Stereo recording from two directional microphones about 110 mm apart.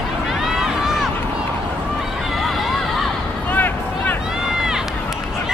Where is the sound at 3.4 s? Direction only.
15° left (ahead or behind).